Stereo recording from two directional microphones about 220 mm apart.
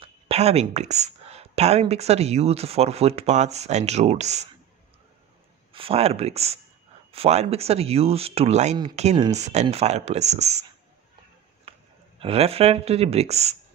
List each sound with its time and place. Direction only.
0.0 s speech: 30° right (ahead or behind)
5.7 s speech: 25° right (ahead or behind)
11.7 s a sound: 25° right (ahead or behind)
12.2 s speech: 25° right (ahead or behind)